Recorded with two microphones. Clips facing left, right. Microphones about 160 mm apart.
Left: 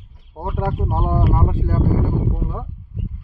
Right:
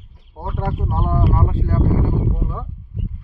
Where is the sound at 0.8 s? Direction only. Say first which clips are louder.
Left 1 dB; 20° left (ahead or behind).